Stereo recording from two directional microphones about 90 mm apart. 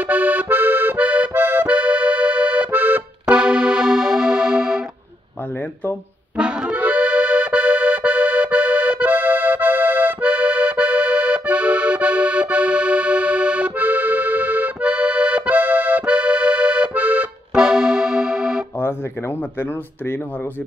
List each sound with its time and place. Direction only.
0.0 s accordion: 20° right (ahead or behind)
3.3 s music: 10° right (ahead or behind)
6.3 s accordion: 10° right (ahead or behind)
17.6 s music: 5° right (ahead or behind)